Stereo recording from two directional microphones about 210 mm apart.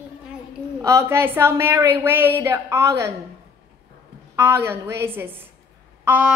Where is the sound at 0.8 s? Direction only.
10° right (ahead or behind).